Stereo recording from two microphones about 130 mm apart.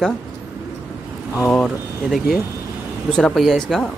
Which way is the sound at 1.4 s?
10° left (ahead or behind).